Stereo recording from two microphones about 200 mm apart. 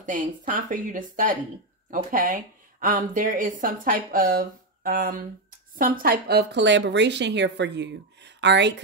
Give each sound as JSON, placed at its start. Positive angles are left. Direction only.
{"t": 0.0, "sound": "a woman's voice", "side_deg": -40}